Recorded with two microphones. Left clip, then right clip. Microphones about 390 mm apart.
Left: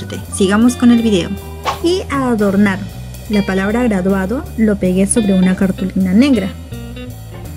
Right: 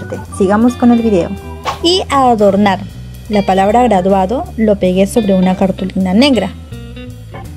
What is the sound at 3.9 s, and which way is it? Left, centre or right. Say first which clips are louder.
Speech: right 6 dB; right.